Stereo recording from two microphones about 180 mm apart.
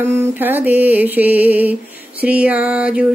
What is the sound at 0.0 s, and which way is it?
Mantra, 10° right (ahead or behind).